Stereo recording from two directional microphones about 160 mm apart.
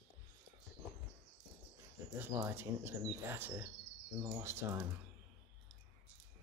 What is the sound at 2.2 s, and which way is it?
Speech, 15° right (ahead or behind).